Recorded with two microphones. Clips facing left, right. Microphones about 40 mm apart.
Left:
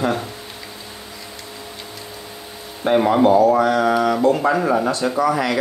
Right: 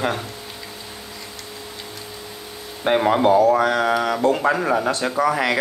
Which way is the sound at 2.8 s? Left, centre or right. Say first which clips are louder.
Left 2 dB; right.